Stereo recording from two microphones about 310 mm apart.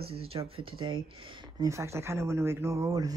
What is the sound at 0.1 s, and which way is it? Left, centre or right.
A woman's voice, centre.